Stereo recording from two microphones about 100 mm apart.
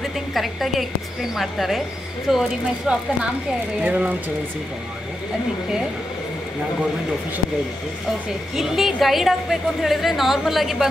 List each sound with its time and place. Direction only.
0.0 s a woman's voice: centre (ahead or behind); by 4.1 s 15° right (ahead or behind)
8.5 s a woman's voice: 5° right (ahead or behind)